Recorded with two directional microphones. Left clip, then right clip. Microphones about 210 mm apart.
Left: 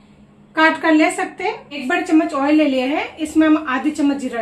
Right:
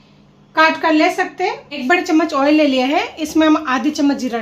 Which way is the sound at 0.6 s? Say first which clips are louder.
Right 1 dB; 35° right (ahead or behind).